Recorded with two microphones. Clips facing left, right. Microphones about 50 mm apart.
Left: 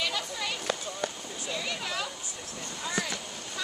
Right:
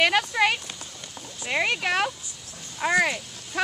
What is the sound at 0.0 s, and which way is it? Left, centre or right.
Speech, right.